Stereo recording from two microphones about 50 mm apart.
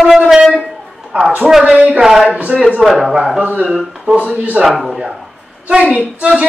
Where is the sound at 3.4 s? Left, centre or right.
Right.